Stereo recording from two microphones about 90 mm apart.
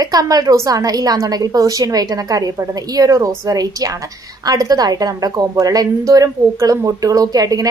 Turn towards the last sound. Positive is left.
turn(degrees=-45)  # may be behind; listen again after turning